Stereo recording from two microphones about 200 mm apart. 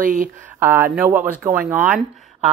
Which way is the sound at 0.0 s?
40° right (ahead or behind).